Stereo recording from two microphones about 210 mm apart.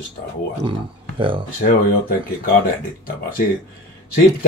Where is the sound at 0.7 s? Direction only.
25° right (ahead or behind).